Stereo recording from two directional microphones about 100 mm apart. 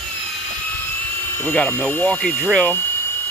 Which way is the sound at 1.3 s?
15° left (ahead or behind).